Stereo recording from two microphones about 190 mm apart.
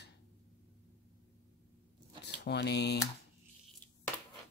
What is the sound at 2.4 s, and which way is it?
Speech, 60° left (ahead or behind).